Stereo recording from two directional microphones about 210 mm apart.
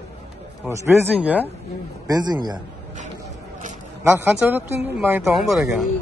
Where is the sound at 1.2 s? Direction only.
5° right (ahead or behind).